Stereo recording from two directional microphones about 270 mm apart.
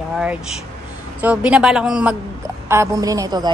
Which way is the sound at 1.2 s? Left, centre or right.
Centre.